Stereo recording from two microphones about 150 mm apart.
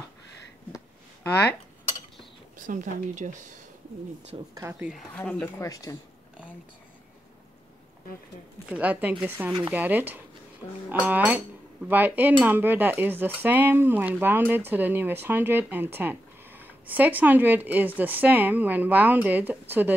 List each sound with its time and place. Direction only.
0.7 s a sound: 15° left (ahead or behind)
2.6 s speech: 60° right (ahead or behind)
4.6 s speech: 20° right (ahead or behind)
5.1 s speech: 5° left (ahead or behind)
5.6 s speech: 20° left (ahead or behind)
8.6 s speech: 10° right (ahead or behind)